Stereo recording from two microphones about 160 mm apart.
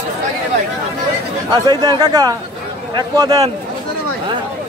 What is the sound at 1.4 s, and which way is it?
Speech, 25° right (ahead or behind).